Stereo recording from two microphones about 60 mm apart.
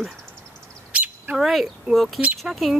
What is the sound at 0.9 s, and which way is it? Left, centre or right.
Bird, right.